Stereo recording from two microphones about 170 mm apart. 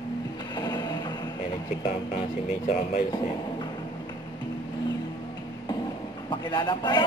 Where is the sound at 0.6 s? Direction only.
25° left (ahead or behind).